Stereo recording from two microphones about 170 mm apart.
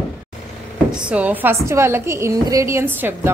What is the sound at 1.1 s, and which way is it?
A woman's voice, 10° right (ahead or behind).